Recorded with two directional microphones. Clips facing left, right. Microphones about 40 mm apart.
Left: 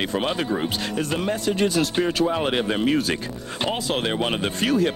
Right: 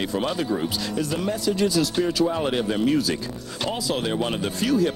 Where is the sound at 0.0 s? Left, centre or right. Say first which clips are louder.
Left 1 dB; left.